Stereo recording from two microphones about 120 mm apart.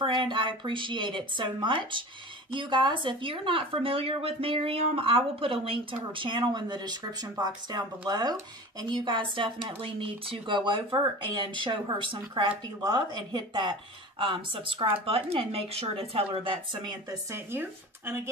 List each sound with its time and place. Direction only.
0.0 s speech: 45° right (ahead or behind)
16.8 s speech: 25° right (ahead or behind)